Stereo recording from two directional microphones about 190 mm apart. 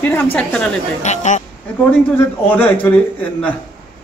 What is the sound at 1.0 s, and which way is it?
Speech, 40° left (ahead or behind).